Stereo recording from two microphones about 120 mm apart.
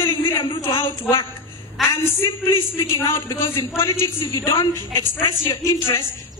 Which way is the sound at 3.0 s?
20° left (ahead or behind).